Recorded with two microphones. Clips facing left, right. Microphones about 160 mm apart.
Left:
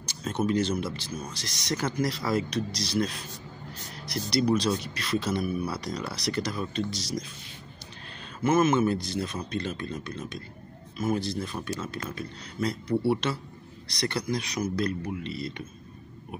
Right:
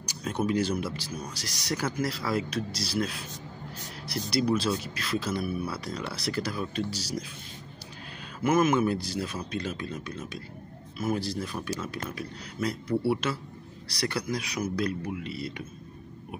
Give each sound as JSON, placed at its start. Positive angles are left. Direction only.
{"t": 0.2, "sound": "speech", "side_deg": -10}
{"t": 8.4, "sound": "speech", "side_deg": -10}